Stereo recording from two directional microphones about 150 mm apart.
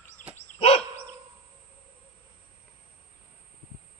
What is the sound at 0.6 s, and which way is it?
Dog, 45° left (ahead or behind).